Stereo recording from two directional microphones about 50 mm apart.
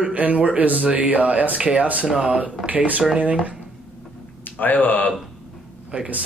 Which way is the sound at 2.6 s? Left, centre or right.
Right.